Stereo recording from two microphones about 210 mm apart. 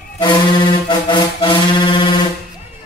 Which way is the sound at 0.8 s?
20° left (ahead or behind).